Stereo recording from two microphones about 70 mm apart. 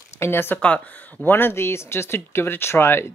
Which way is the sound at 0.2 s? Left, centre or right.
Left.